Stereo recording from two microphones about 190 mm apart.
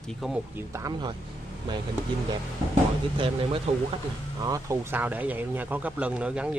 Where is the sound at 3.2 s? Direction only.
30° right (ahead or behind).